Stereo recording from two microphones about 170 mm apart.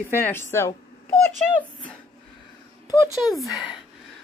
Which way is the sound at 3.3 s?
Centre (ahead or behind).